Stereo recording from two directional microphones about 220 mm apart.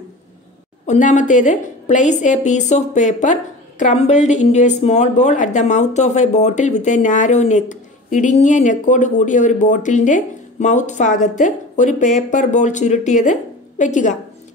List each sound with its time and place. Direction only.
0.8 s a woman's voice: 35° left (ahead or behind)